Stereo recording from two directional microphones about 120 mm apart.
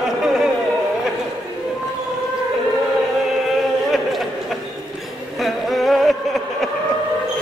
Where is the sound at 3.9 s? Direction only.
Centre (ahead or behind).